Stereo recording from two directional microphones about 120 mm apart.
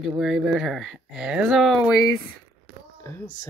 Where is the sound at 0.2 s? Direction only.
5° right (ahead or behind).